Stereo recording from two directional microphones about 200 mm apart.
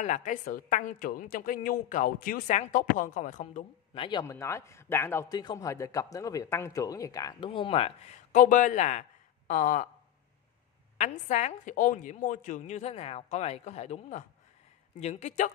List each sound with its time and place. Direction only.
0.0 s a woman's voice: 40° left (ahead or behind)
3.9 s a man's voice: 25° left (ahead or behind)
11.0 s a woman's voice: 35° left (ahead or behind)